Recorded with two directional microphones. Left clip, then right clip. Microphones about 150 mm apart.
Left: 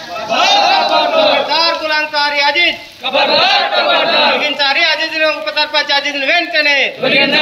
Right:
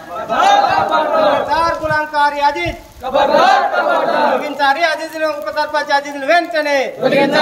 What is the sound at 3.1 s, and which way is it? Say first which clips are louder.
Speech: even; 5° right (ahead or behind).